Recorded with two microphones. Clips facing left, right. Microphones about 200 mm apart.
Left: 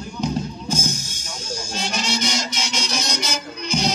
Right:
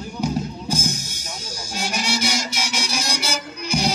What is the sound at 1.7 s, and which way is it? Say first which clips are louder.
Music: right 1 dB; 10° right (ahead or behind).